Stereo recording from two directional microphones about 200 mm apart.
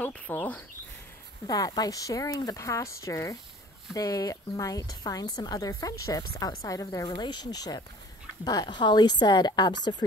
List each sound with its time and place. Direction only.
0.0 s a woman's voice: 10° left (ahead or behind)
1.5 s a woman's voice: 20° left (ahead or behind)